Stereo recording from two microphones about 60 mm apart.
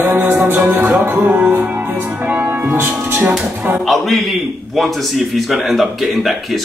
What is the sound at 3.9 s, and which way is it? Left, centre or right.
A man's voice, centre.